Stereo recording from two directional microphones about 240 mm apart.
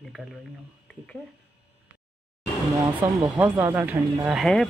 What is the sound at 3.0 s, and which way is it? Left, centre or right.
Speech, centre.